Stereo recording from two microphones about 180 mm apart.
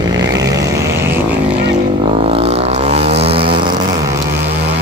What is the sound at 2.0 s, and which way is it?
Vehicle, 30° right (ahead or behind).